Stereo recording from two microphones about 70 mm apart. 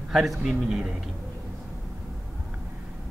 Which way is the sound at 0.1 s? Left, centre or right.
Centre.